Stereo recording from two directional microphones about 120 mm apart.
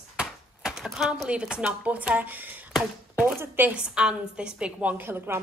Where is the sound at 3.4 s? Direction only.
15° right (ahead or behind).